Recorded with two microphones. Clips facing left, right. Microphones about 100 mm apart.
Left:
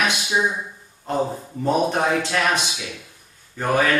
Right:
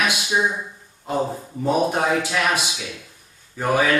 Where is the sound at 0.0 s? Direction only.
10° right (ahead or behind).